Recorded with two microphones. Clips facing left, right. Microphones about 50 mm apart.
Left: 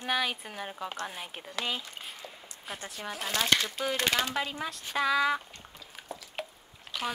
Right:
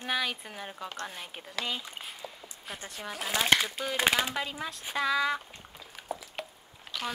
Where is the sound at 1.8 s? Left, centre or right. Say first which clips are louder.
Right 1 dB; centre.